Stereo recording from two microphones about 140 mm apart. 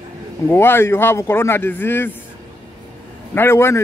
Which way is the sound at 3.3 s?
15° left (ahead or behind).